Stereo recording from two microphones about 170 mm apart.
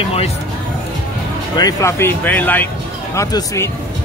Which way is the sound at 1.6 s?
20° left (ahead or behind).